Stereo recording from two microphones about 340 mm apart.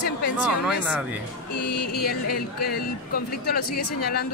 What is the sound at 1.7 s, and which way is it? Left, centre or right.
Speech, left.